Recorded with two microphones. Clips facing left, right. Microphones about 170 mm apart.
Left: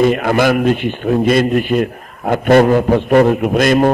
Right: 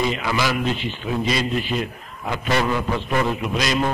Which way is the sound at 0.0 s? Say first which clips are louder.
Left 10 dB; 55° left (ahead or behind).